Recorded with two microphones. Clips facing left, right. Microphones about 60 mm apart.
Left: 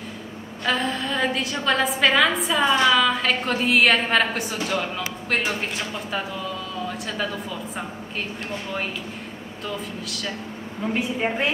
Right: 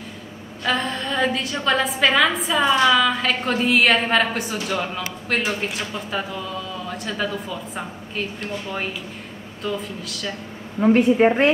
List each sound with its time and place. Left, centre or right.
0.7 s a woman's voice: centre
9.6 s a woman's voice: centre
10.9 s a woman's voice: right